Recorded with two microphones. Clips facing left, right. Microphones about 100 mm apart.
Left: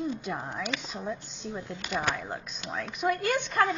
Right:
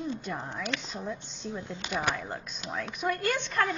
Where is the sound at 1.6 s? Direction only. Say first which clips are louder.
Even; 20° right (ahead or behind).